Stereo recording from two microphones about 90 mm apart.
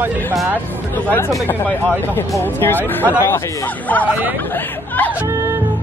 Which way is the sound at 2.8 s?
20° right (ahead or behind).